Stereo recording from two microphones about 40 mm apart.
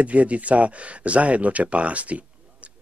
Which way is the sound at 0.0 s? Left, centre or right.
Right.